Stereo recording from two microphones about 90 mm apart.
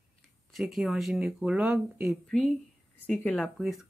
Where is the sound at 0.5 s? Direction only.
Centre (ahead or behind).